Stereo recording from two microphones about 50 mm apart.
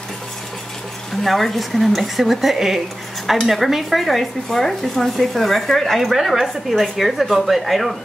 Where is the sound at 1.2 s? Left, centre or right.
Centre.